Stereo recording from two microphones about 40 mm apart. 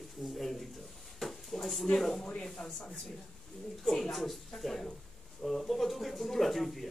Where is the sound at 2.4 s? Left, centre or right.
Centre.